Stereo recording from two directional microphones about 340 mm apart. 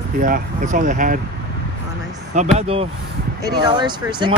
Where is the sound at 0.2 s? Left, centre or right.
Right.